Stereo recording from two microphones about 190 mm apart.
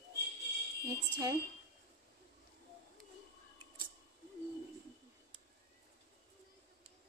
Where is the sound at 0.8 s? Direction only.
20° right (ahead or behind).